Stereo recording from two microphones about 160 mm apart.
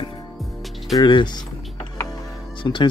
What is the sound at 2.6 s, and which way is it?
Speech, 30° left (ahead or behind).